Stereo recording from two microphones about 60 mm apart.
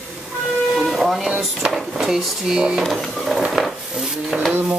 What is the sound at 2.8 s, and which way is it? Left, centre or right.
Speech, centre.